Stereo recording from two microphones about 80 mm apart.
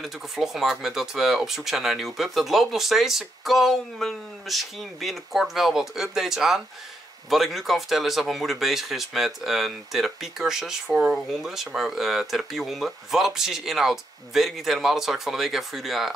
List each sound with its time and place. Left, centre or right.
0.0 s speech: centre